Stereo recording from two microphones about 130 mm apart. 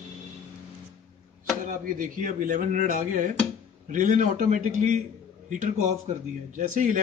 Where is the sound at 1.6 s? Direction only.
90° right.